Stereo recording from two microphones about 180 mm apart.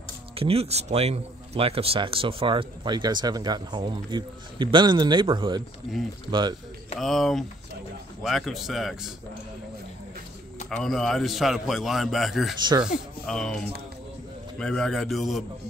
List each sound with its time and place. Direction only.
0.4 s speech: 35° right (ahead or behind)
5.9 s a man's voice: centre (ahead or behind)
6.3 s speech: 25° right (ahead or behind)
7.0 s a man's voice: centre (ahead or behind)
10.7 s a man's voice: centre (ahead or behind)
14.6 s a man's voice: 5° left (ahead or behind)